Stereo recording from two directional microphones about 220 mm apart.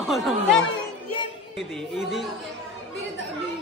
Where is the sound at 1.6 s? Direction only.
Centre (ahead or behind).